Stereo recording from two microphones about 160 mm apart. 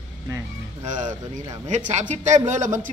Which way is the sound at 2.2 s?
50° right (ahead or behind).